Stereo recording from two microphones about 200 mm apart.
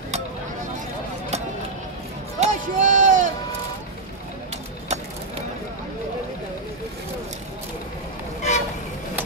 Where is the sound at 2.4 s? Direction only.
40° right (ahead or behind).